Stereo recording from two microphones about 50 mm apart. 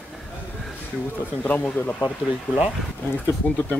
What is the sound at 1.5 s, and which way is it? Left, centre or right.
Speech, left.